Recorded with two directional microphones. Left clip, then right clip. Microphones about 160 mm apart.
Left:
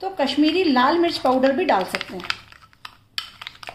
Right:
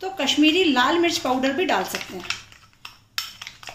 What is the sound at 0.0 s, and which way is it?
A woman's voice, 35° left (ahead or behind).